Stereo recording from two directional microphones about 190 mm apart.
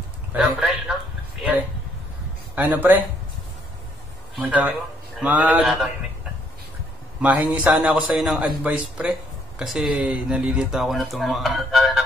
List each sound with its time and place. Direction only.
0.3 s speech: 5° right (ahead or behind)
2.5 s a man's voice: 10° right (ahead or behind)
4.4 s a man's voice: 10° right (ahead or behind)
7.2 s speech: 10° right (ahead or behind)